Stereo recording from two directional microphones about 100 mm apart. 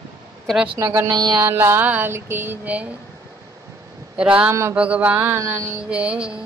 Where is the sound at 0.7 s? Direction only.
30° right (ahead or behind).